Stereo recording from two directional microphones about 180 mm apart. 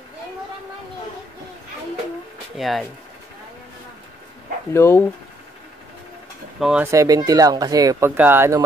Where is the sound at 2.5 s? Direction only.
Centre (ahead or behind).